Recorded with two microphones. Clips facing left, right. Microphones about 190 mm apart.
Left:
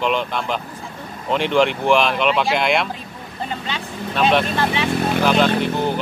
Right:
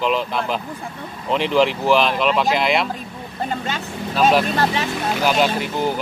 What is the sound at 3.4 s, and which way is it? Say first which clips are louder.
Speech: right 3 dB; 45° right (ahead or behind).